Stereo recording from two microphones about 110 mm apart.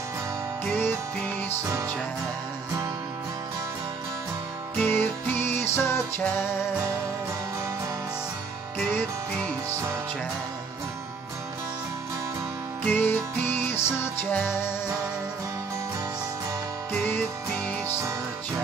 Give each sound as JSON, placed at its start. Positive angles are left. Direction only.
{"t": 0.7, "sound": "music", "side_deg": 20}
{"t": 4.7, "sound": "music", "side_deg": 20}
{"t": 8.9, "sound": "music", "side_deg": 15}
{"t": 12.8, "sound": "music", "side_deg": 15}
{"t": 16.9, "sound": "music", "side_deg": 15}